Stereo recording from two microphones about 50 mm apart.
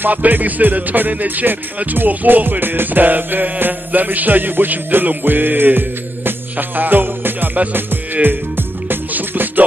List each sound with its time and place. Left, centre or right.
0.0 s music: right